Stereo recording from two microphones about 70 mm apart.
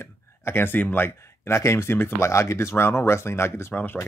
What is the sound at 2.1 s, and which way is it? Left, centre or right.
Speech, left.